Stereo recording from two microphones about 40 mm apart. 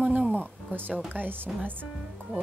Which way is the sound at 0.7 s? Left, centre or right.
Right.